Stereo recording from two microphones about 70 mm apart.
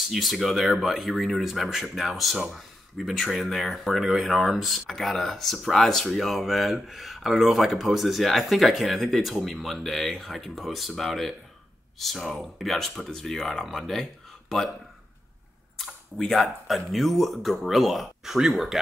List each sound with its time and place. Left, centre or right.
0.1 s speech: centre
15.8 s speech: centre